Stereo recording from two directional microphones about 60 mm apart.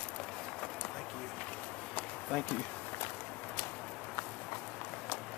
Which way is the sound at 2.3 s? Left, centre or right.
Centre.